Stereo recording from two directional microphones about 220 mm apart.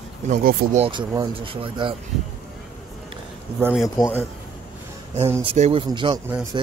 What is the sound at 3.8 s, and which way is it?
Speech, 10° left (ahead or behind).